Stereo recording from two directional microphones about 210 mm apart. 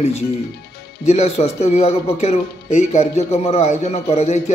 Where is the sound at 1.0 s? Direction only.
30° left (ahead or behind).